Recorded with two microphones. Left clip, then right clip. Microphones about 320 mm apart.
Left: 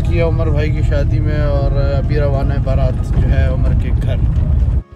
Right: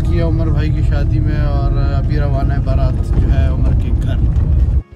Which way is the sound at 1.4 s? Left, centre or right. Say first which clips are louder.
Left 4 dB; centre.